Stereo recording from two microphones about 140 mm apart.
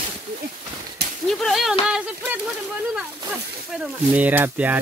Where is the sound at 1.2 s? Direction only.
Centre (ahead or behind).